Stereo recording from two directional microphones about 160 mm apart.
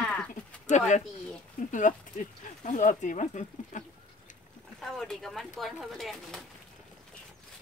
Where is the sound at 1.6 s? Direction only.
60° left (ahead or behind).